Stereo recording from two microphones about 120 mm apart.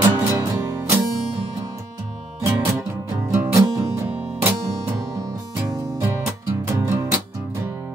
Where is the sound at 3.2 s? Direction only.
25° right (ahead or behind).